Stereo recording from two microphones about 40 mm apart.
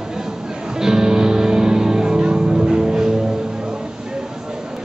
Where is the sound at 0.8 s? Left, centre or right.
Centre.